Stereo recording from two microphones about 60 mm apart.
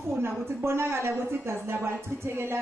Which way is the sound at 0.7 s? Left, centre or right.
Right.